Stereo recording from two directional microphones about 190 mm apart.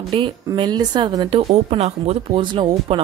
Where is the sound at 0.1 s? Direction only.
25° right (ahead or behind).